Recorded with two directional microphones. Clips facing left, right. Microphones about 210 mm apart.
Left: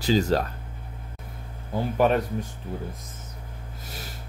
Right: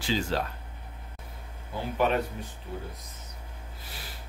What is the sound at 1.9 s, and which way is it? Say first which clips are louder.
Speech: left 4 dB; 40° left (ahead or behind).